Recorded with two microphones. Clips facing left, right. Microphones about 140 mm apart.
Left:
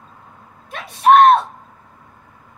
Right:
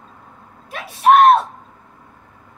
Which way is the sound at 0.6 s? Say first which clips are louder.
Left 1 dB; 5° right (ahead or behind).